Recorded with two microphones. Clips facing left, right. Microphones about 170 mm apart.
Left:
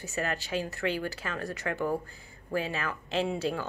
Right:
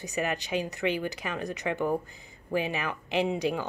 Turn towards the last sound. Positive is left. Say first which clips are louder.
# right 2 dB
turn(degrees=-15)  # may be behind; listen again after turning